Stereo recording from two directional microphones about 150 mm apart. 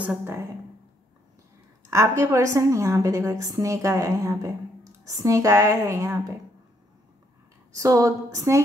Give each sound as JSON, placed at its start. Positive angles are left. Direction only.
{"t": 0.0, "sound": "a woman's voice", "side_deg": -10}
{"t": 1.9, "sound": "a woman's voice", "side_deg": -20}
{"t": 7.7, "sound": "a woman's voice", "side_deg": -20}